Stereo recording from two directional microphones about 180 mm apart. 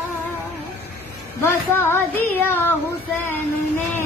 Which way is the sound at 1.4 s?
15° left (ahead or behind).